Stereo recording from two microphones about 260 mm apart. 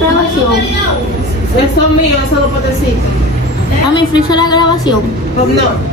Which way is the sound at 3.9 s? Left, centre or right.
Centre.